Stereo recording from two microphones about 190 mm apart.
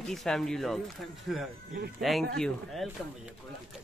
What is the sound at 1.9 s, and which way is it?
Speech, centre (ahead or behind).